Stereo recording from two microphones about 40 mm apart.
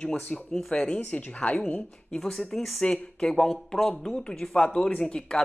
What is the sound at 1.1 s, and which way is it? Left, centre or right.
Speech, left.